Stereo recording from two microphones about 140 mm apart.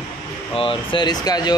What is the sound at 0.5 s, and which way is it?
Speech, 35° left (ahead or behind).